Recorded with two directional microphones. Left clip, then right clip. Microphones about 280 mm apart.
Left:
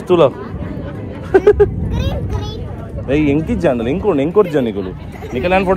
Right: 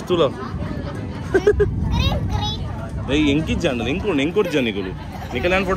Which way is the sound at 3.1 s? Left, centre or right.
Centre.